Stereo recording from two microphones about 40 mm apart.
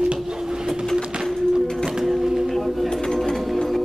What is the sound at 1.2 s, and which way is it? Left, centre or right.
Music, centre.